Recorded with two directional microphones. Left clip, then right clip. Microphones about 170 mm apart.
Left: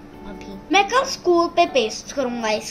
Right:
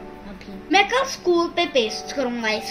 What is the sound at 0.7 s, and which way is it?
A woman's voice, 20° right (ahead or behind).